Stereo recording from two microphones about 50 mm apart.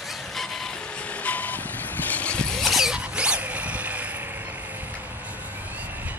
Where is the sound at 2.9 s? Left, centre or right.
Right.